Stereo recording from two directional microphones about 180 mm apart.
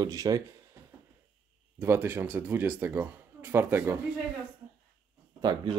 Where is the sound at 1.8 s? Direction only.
15° right (ahead or behind).